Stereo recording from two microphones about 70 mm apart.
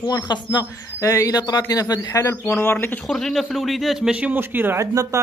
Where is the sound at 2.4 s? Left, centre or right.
Left.